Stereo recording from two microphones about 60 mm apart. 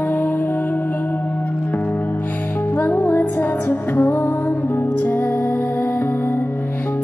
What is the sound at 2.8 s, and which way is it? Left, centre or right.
Music, left.